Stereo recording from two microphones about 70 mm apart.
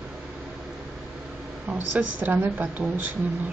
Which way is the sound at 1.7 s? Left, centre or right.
Right.